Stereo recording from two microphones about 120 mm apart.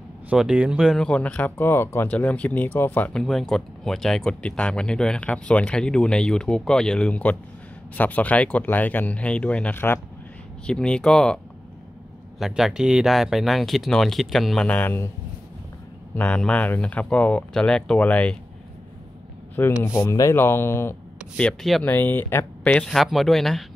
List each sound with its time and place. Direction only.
0.3 s speech: 10° right (ahead or behind); by 3.1 s 15° left (ahead or behind)
3.1 s speech: 5° left (ahead or behind)
12.4 s speech: centre (ahead or behind)
14.7 s speech: 15° left (ahead or behind)
16.2 s speech: 10° left (ahead or behind)
19.6 s speech: 25° left (ahead or behind)
21.4 s speech: 5° left (ahead or behind)
21.8 s speech: 15° left (ahead or behind)